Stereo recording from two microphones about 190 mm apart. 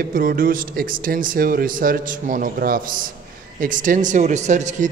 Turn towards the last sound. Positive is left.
turn(degrees=-40)  # may be behind; listen again after turning